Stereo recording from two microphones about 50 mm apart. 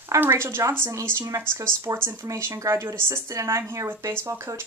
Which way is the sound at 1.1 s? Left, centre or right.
Right.